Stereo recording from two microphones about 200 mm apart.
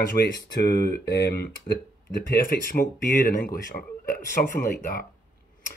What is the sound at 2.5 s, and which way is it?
Speech, 45° left (ahead or behind).